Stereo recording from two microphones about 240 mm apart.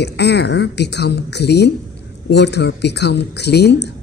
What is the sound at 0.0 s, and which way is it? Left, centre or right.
Speech, left.